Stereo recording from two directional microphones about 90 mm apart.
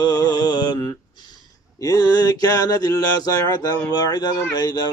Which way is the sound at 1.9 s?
45° left (ahead or behind).